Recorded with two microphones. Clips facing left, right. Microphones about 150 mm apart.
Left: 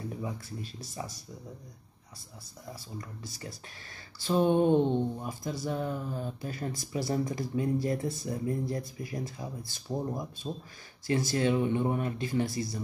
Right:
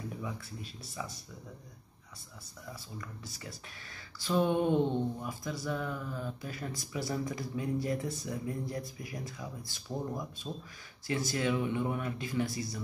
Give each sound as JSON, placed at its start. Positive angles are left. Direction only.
{"t": 0.2, "sound": "speech", "side_deg": 40}
{"t": 2.7, "sound": "speech", "side_deg": 35}